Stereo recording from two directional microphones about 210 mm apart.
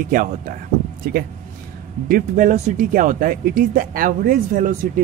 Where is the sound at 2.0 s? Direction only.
40° right (ahead or behind).